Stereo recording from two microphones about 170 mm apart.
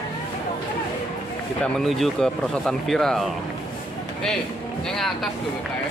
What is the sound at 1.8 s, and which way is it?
Speech, centre (ahead or behind).